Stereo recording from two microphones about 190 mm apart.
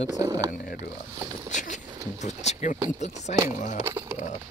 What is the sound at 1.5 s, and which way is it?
Speech, 40° left (ahead or behind).